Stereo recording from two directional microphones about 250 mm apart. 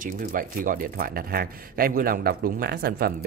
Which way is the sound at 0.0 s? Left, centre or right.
Right.